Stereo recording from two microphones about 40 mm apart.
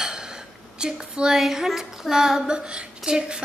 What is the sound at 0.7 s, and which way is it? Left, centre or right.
Child singing, right.